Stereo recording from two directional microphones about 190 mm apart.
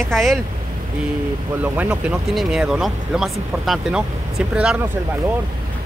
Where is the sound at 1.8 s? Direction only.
5° right (ahead or behind).